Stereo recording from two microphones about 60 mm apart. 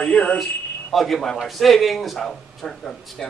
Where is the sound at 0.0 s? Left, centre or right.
Centre.